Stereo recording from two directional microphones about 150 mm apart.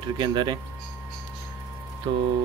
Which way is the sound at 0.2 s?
30° right (ahead or behind).